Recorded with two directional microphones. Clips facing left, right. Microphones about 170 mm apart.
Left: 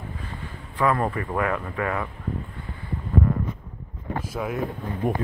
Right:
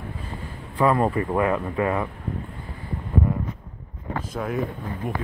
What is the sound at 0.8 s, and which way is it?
Speech, 25° right (ahead or behind).